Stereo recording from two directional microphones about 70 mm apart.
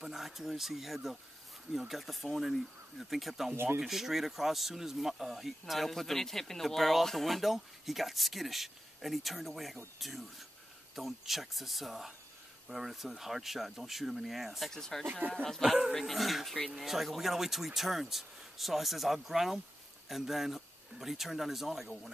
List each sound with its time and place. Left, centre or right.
0.0 s speech: centre
3.5 s speech: right
3.8 s speech: centre
15.0 s speech: right
15.6 s speech: centre